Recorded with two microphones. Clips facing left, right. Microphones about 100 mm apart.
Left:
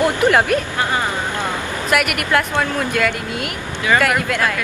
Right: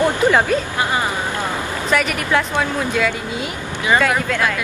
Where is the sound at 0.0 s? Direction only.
10° left (ahead or behind).